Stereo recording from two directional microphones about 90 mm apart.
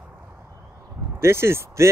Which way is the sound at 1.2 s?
30° right (ahead or behind).